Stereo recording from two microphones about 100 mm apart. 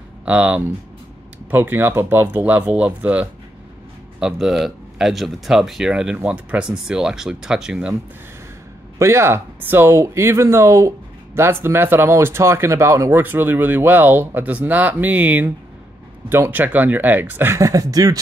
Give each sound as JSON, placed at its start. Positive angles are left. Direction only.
{"t": 0.2, "sound": "speech", "side_deg": -15}
{"t": 8.9, "sound": "speech", "side_deg": -30}